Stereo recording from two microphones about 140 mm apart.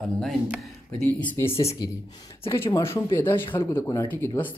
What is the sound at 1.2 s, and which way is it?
Speech, 20° left (ahead or behind).